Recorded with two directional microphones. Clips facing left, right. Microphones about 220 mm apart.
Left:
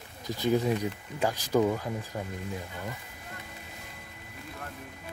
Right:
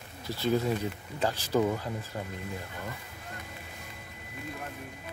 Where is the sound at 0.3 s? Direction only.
15° left (ahead or behind).